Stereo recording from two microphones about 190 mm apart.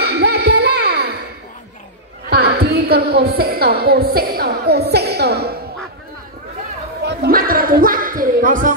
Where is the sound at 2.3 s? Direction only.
55° right (ahead or behind).